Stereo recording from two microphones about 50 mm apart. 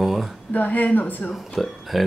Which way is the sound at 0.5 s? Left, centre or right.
Left.